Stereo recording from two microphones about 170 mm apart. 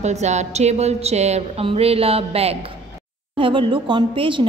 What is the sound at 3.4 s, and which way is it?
A woman's voice, 30° right (ahead or behind).